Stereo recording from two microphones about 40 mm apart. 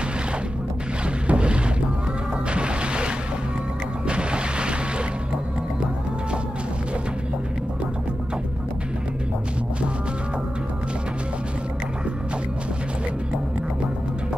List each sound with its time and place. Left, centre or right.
1.2 s boat: right
2.5 s music: right